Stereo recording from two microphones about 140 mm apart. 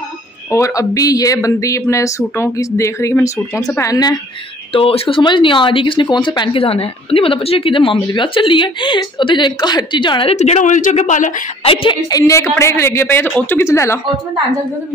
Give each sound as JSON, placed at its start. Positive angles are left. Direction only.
{"t": 0.5, "sound": "speech", "side_deg": 20}
{"t": 4.7, "sound": "speech", "side_deg": 40}
{"t": 10.3, "sound": "speech", "side_deg": 55}
{"t": 11.6, "sound": "speech", "side_deg": 40}
{"t": 12.1, "sound": "speech", "side_deg": 25}